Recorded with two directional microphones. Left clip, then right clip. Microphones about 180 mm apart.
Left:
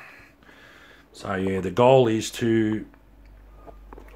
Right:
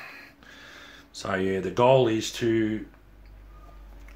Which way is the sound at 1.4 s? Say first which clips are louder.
Left 3 dB; 50° left (ahead or behind).